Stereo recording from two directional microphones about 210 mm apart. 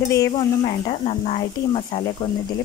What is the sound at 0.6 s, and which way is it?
Speech, 25° left (ahead or behind).